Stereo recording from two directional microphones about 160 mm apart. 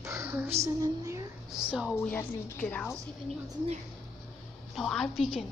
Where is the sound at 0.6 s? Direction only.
20° right (ahead or behind).